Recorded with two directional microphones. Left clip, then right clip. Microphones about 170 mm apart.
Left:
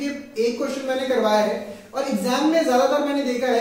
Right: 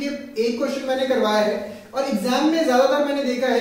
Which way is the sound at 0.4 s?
Centre (ahead or behind).